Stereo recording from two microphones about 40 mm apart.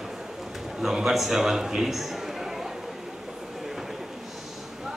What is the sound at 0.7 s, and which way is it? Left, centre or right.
Speech, centre.